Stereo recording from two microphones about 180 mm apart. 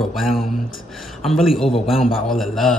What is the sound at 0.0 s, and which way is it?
A man's voice, centre (ahead or behind).